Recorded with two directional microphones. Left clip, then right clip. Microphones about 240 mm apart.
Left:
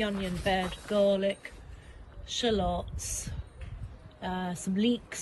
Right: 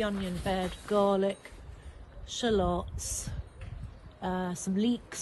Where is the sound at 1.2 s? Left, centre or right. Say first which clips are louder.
Left 1 dB; centre.